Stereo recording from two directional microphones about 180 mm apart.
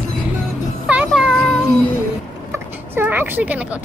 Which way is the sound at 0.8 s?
10° right (ahead or behind).